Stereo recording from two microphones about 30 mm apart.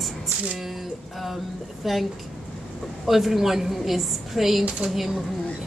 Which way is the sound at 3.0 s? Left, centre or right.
Centre.